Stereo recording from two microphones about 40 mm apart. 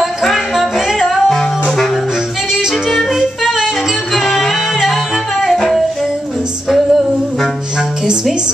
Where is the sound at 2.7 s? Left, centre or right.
Centre.